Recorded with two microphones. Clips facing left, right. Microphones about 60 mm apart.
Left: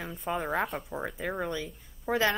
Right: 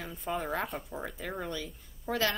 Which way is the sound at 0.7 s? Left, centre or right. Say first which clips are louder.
Left 3 dB; centre.